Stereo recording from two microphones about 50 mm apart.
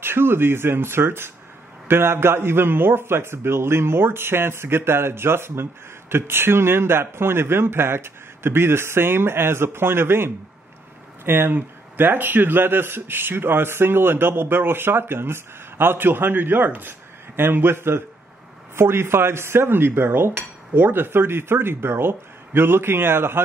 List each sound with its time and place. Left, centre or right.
0.0 s a man's voice: right